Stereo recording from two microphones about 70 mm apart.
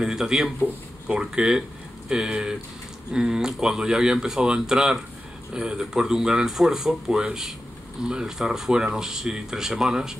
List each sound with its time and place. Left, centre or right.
0.0 s speech: centre